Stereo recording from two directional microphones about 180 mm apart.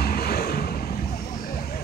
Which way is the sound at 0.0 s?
60° left (ahead or behind).